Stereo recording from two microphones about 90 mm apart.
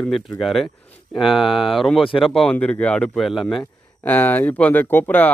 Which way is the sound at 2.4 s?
15° left (ahead or behind).